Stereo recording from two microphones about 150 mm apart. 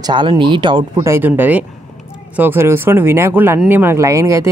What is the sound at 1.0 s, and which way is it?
Speech, 15° right (ahead or behind).